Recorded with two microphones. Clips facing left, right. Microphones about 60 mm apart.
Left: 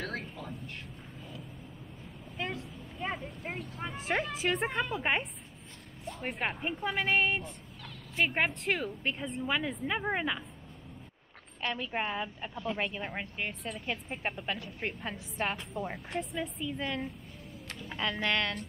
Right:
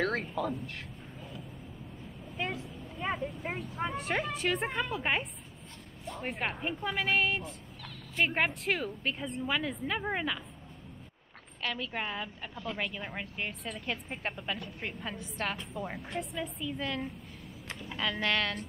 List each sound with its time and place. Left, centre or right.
0.0 s speech: right
2.3 s speech: centre
11.6 s a woman's voice: centre